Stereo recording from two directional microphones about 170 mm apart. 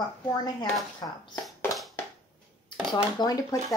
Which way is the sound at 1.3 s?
15° left (ahead or behind).